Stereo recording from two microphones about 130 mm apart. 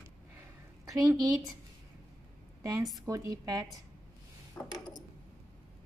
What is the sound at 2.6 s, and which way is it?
A woman's voice, 25° right (ahead or behind).